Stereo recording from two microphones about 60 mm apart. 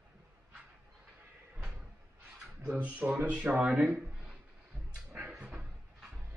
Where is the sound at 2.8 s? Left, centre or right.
Right.